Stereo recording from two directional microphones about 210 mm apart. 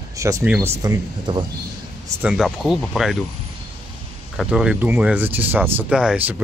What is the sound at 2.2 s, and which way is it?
Speech, centre (ahead or behind).